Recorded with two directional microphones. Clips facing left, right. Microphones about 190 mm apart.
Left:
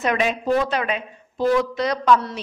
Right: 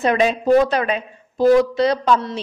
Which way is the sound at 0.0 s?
30° right (ahead or behind).